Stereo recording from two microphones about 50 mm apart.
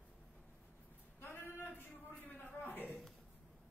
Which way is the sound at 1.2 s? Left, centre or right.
Left.